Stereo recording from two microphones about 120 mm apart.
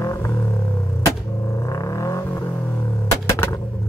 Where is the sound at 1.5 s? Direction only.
25° left (ahead or behind).